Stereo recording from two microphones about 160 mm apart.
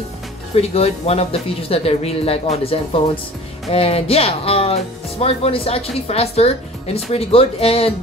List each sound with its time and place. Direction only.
0.6 s speech: 40° left (ahead or behind)